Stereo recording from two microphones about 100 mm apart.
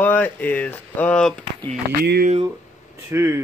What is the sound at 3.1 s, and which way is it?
Speech, 25° right (ahead or behind).